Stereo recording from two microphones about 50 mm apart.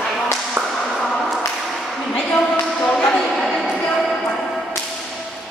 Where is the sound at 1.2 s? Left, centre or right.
Centre.